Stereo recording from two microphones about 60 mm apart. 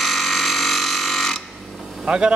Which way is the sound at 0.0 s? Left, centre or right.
Centre.